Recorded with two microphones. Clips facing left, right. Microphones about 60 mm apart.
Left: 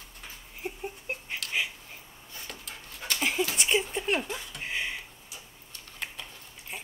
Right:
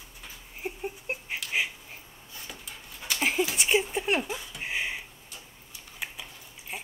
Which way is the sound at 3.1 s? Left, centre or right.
Centre.